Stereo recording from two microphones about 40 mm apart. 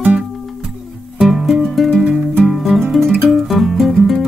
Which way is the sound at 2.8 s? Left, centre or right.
Centre.